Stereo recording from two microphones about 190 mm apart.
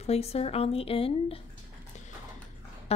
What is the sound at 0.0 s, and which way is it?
A woman's voice, 35° left (ahead or behind).